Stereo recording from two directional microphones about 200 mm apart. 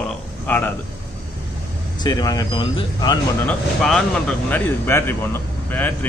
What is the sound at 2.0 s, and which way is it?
Speech, 20° left (ahead or behind).